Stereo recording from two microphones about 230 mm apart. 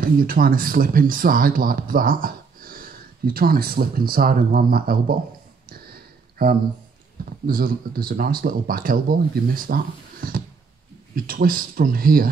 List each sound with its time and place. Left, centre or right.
0.0 s speech: right
5.7 s a sound: right
7.2 s speech: right